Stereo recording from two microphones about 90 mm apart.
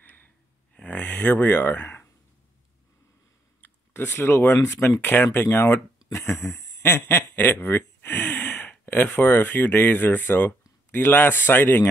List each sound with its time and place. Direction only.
0.0 s gasp: 20° left (ahead or behind)
0.9 s speech: 20° left (ahead or behind)
3.6 s speech: 25° left (ahead or behind)